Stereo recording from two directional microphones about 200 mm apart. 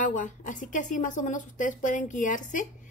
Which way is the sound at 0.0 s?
40° left (ahead or behind).